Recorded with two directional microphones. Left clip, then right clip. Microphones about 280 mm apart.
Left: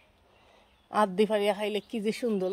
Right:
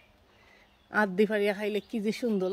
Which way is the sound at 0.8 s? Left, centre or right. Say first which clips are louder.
Left 1 dB; centre.